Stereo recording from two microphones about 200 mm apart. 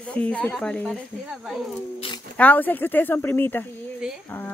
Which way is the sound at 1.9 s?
25° left (ahead or behind).